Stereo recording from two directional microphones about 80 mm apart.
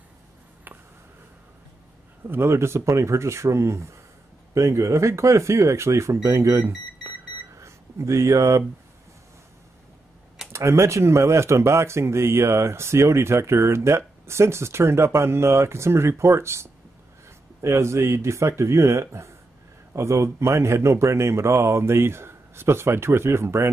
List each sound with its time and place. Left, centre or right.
2.2 s speech: right
7.5 s a sound: right
10.5 s speech: right